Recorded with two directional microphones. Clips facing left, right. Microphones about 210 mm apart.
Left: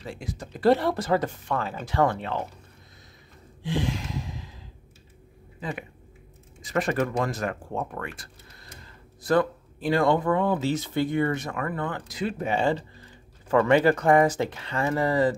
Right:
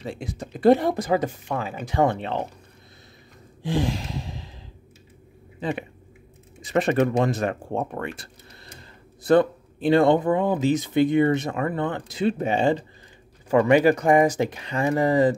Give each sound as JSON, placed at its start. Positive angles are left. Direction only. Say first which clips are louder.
{"t": 0.0, "sound": "speech", "louder": "right 4 dB", "side_deg": -20}
{"t": 3.6, "sound": "a sound", "louder": "right 3 dB", "side_deg": -40}
{"t": 5.6, "sound": "speech", "louder": "right 6 dB", "side_deg": -25}